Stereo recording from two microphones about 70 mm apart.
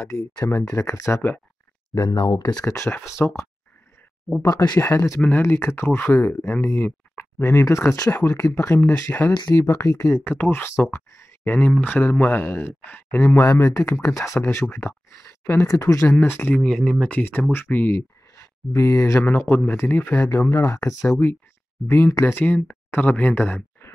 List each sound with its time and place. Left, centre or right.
0.1 s speech: left
2.3 s speech: left
2.6 s speech: left
4.4 s speech: left
10.1 s speech: left
13.4 s speech: left
15.6 s speech: left
16.6 s speech: centre
17.2 s speech: left
18.3 s a sound: left
19.2 s speech: left
20.2 s speech: left
21.9 s speech: left